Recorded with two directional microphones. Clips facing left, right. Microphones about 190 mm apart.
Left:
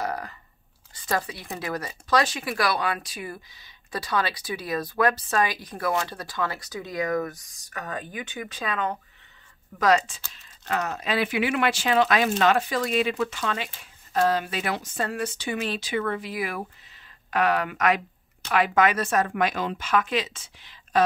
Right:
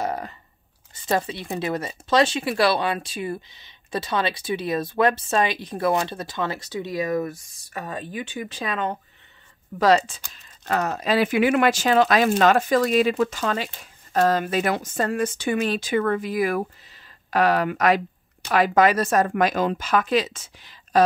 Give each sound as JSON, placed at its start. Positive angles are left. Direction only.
{"t": 0.0, "sound": "chewing", "side_deg": -25}
{"t": 0.9, "sound": "speech", "side_deg": -25}